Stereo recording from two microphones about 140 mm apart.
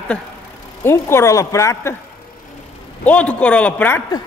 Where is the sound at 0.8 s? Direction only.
20° left (ahead or behind).